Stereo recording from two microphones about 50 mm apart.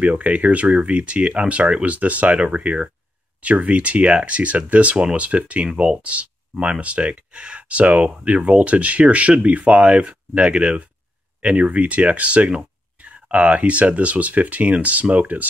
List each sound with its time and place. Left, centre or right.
0.0 s speech: right